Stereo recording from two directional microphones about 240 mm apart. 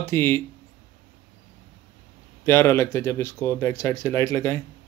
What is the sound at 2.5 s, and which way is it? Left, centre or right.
Speech, centre.